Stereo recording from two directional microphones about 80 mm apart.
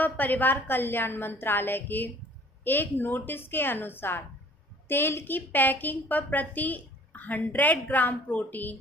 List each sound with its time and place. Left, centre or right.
0.0 s a woman's voice: left